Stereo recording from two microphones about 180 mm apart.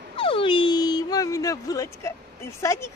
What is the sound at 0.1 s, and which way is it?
Wail, 30° left (ahead or behind).